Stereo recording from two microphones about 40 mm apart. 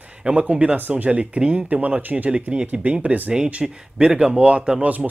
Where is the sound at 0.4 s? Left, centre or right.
Right.